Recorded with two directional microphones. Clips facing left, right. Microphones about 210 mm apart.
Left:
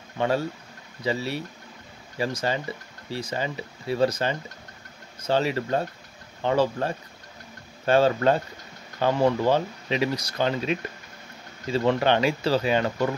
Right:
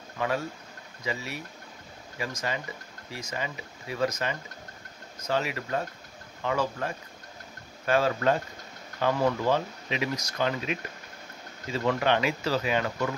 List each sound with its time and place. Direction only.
0.2 s speech: 30° left (ahead or behind)